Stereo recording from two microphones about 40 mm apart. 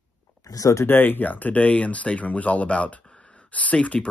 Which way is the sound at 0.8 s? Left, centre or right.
Left.